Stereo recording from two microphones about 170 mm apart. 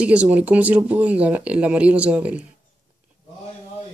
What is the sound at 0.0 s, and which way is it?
Speech, 5° right (ahead or behind).